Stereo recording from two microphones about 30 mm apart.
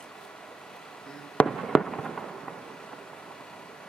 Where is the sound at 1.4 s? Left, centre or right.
Left.